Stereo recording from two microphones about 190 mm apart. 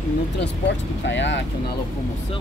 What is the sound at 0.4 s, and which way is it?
Speech, 70° left (ahead or behind).